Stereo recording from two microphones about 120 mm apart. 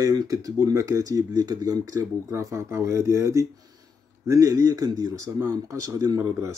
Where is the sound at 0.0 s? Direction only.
35° right (ahead or behind).